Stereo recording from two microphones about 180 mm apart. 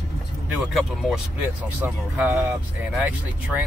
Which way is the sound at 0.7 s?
Centre (ahead or behind).